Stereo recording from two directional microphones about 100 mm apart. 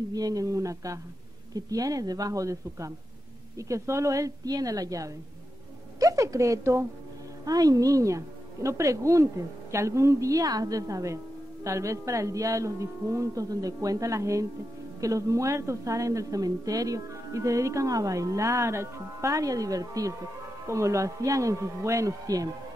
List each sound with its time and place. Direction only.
0.1 s a woman's voice: 40° right (ahead or behind)
5.9 s a sound: 35° right (ahead or behind)
7.4 s a woman's voice: 40° right (ahead or behind)